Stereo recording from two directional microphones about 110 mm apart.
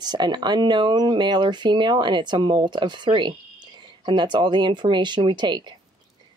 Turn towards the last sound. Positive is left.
turn(degrees=-45)  # may be behind; listen again after turning